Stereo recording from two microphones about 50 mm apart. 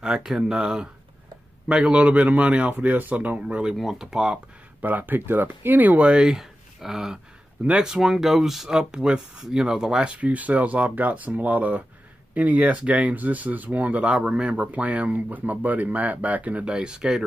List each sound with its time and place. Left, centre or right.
0.0 s speech: centre
1.7 s speech: right
2.7 s speech: right
3.7 s speech: centre
4.8 s speech: right
6.2 s speech: centre
10.1 s speech: right
14.1 s speech: right